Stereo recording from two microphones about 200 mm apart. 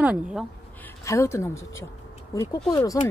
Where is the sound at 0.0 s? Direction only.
5° right (ahead or behind).